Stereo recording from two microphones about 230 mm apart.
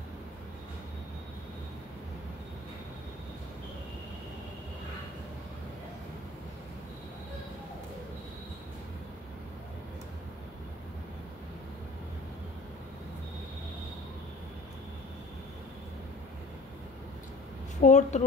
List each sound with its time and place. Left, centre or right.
17.7 s speech: left